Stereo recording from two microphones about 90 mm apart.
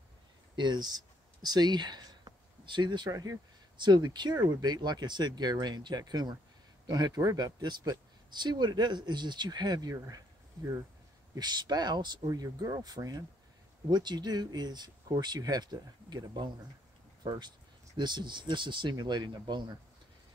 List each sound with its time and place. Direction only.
0.6 s a sound: 55° right (ahead or behind)
3.1 s speech: 40° right (ahead or behind)
3.7 s speech: 55° right (ahead or behind); by 10.8 s 35° right (ahead or behind)
11.3 s speech: 50° right (ahead or behind)
12.3 s speech: 45° right (ahead or behind)